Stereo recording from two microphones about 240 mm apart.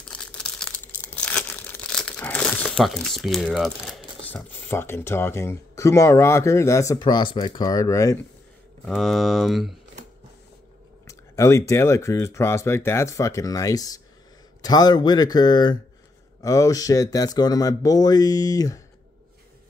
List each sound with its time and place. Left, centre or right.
0.0 s crumpling: centre
8.8 s speech: centre
11.1 s speech: centre